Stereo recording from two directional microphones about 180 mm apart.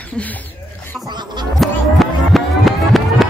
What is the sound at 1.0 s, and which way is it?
Speech, 25° right (ahead or behind).